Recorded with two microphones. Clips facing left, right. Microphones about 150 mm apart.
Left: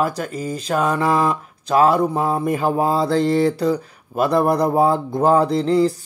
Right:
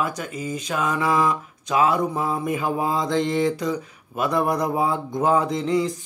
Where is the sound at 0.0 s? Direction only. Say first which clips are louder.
Left 5 dB; 35° left (ahead or behind).